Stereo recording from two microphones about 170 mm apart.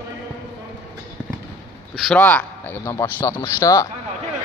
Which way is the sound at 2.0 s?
5° left (ahead or behind).